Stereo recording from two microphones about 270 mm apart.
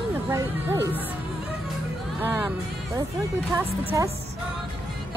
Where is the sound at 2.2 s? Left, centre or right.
Centre.